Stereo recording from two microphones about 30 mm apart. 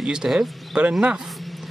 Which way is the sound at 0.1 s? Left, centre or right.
Right.